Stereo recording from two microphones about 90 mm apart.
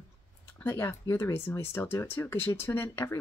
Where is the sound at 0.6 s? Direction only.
30° left (ahead or behind).